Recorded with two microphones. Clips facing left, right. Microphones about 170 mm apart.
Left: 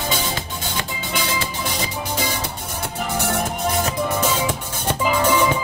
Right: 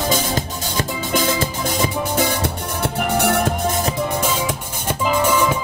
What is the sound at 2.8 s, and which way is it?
Music, 65° right (ahead or behind).